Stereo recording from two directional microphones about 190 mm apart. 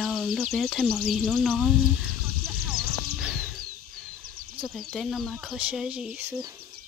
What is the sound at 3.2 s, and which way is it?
Music, centre (ahead or behind).